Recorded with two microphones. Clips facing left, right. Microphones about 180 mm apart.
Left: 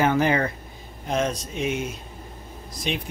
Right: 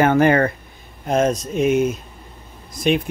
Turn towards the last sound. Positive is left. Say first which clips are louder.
# right 10 dB
turn(degrees=-55)  # may be behind; listen again after turning